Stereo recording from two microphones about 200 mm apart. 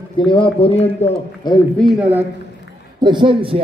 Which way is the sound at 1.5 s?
20° left (ahead or behind).